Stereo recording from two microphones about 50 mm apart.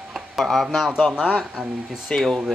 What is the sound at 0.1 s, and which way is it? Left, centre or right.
Speech, centre.